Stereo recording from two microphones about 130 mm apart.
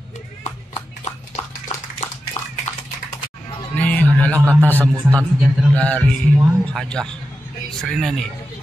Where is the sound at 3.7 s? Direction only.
10° left (ahead or behind).